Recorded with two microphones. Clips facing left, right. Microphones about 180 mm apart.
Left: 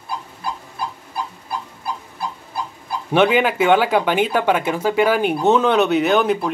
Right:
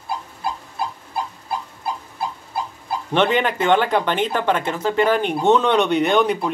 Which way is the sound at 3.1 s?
5° left (ahead or behind).